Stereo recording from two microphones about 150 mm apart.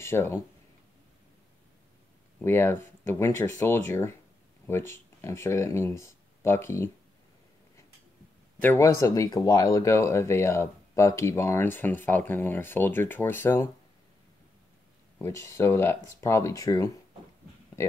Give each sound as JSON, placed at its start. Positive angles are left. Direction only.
{"t": 0.0, "sound": "speech", "side_deg": 15}
{"t": 2.4, "sound": "speech", "side_deg": 15}
{"t": 8.5, "sound": "speech", "side_deg": 15}
{"t": 15.1, "sound": "speech", "side_deg": 20}